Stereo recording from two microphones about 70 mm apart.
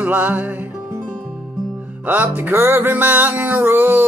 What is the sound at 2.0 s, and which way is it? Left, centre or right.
Music, right.